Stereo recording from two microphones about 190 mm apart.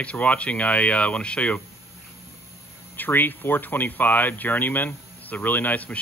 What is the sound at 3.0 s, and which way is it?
Speech, 10° left (ahead or behind).